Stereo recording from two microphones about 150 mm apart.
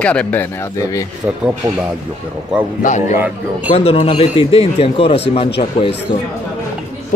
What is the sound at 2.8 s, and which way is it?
Speech, 55° left (ahead or behind).